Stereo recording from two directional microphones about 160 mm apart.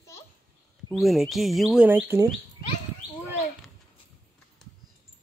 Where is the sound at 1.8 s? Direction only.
10° right (ahead or behind).